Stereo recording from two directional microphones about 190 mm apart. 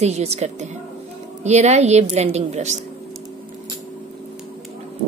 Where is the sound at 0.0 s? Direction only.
35° right (ahead or behind).